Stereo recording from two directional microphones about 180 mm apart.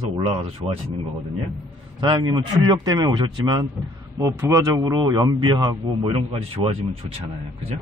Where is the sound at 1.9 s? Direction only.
25° right (ahead or behind).